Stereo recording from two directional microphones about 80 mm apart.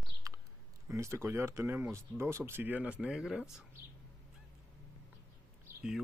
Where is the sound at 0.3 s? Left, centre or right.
Right.